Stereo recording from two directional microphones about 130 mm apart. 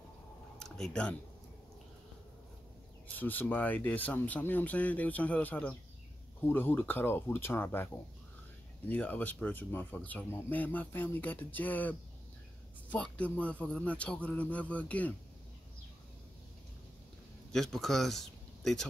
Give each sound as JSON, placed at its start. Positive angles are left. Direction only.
{"t": 0.6, "sound": "a sound", "side_deg": 5}
{"t": 3.2, "sound": "speech", "side_deg": 15}
{"t": 17.5, "sound": "speech", "side_deg": 5}